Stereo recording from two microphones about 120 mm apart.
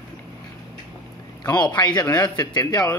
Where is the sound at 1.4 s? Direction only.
35° left (ahead or behind).